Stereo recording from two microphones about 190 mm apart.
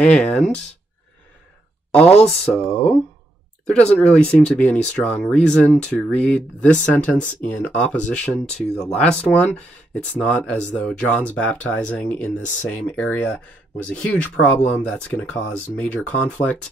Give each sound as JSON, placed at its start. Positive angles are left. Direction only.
{"t": 0.0, "sound": "speech", "side_deg": 5}
{"t": 2.1, "sound": "speech", "side_deg": 0}
{"t": 3.7, "sound": "speech", "side_deg": 5}